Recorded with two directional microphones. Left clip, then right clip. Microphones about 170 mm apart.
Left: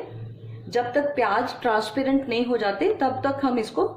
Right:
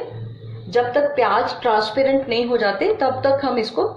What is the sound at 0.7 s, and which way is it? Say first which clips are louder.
A woman's voice: right 5 dB; 35° left (ahead or behind).